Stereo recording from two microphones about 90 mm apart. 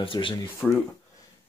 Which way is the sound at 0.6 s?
20° left (ahead or behind).